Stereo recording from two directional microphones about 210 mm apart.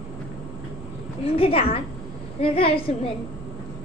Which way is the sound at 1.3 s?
25° left (ahead or behind).